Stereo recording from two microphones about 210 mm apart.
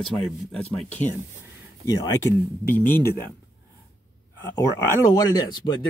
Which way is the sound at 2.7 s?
10° left (ahead or behind).